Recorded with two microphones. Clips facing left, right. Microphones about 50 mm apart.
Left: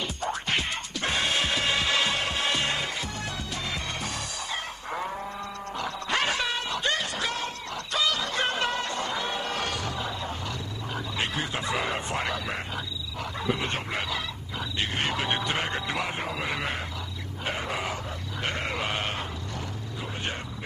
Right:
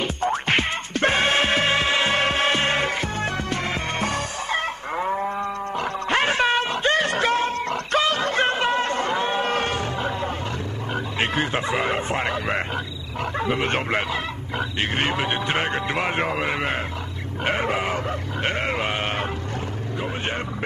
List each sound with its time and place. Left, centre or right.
0.0 s music: right
4.9 s music: right
7.1 s a sound: right
11.1 s speech: right
12.5 s speech: right
15.5 s speech: right
16.1 s speech: right
17.5 s a sound: right
17.9 s grunt: right